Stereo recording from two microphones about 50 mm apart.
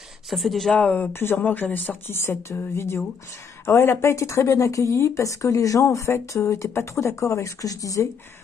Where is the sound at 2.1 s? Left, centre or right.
Left.